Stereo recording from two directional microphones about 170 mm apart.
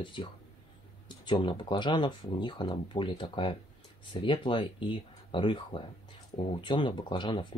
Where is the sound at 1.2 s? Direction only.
30° left (ahead or behind).